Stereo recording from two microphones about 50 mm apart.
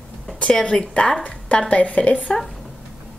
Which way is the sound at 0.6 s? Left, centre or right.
Centre.